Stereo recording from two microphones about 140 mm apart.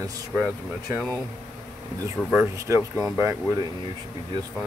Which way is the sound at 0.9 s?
10° left (ahead or behind).